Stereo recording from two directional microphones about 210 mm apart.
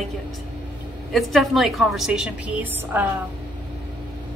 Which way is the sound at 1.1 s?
Centre (ahead or behind).